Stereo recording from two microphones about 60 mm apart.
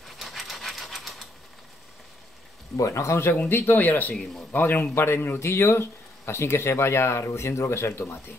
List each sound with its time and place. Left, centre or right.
0.0 s a sound: centre
2.8 s speech: left
4.1 s speech: centre
4.5 s speech: left